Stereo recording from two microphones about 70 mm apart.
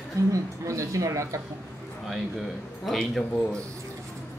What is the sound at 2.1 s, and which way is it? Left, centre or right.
Speech, centre.